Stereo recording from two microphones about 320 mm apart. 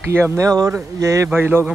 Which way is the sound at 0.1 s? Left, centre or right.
Centre.